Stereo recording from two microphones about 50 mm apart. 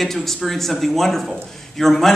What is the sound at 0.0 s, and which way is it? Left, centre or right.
A man's voice, centre.